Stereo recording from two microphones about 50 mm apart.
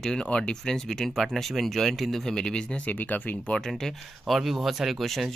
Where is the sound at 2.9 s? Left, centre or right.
Left.